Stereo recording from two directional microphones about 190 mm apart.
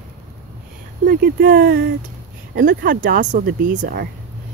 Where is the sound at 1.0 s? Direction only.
55° right (ahead or behind).